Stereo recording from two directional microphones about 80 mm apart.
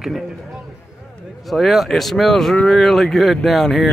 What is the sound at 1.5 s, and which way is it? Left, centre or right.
Speech, centre.